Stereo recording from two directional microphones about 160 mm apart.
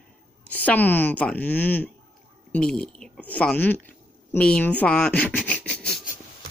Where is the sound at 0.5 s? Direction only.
10° left (ahead or behind).